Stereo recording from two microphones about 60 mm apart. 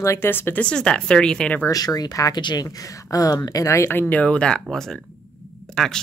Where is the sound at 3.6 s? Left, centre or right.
Left.